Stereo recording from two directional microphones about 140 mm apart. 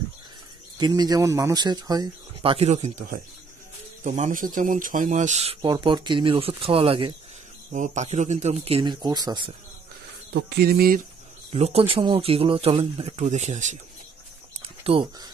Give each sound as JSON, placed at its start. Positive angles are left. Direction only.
{"t": 0.7, "sound": "speech", "side_deg": -30}
{"t": 2.5, "sound": "speech", "side_deg": -50}
{"t": 5.6, "sound": "speech", "side_deg": -30}
{"t": 7.7, "sound": "speech", "side_deg": -60}
{"t": 8.8, "sound": "speech", "side_deg": -30}
{"t": 10.6, "sound": "speech", "side_deg": -90}
{"t": 11.5, "sound": "speech", "side_deg": -45}
{"t": 14.8, "sound": "a sound", "side_deg": -45}